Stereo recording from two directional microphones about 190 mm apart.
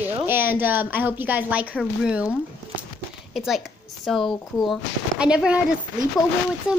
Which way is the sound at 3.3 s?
Centre (ahead or behind).